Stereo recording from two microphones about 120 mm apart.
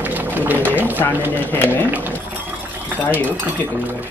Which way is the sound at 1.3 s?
15° left (ahead or behind).